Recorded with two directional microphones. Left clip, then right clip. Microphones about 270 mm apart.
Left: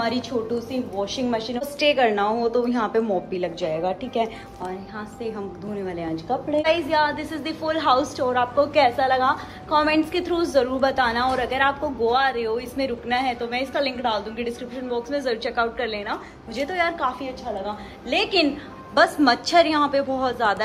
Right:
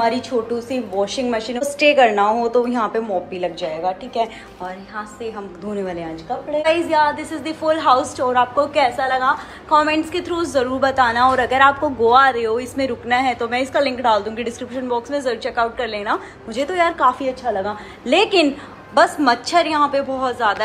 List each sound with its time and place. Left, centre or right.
0.0 s a woman's voice: centre
6.9 s a woman's voice: centre
18.9 s a woman's voice: centre